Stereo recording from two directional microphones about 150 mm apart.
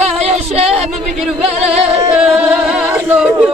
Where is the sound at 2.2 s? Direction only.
5° right (ahead or behind).